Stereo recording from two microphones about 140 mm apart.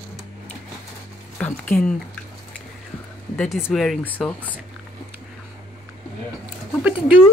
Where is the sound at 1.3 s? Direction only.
10° left (ahead or behind).